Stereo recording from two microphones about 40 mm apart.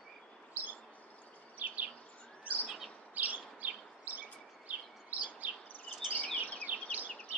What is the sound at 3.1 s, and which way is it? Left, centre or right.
Bird, right.